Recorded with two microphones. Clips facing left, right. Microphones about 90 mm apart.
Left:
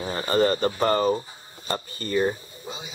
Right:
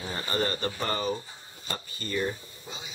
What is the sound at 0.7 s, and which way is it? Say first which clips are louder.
Speech: left 8 dB; 45° left (ahead or behind).